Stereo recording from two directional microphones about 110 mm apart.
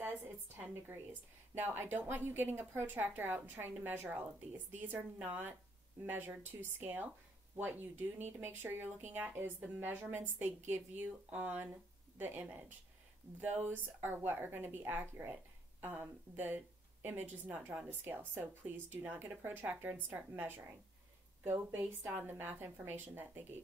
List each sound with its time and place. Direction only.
0.0 s a woman's voice: 20° right (ahead or behind)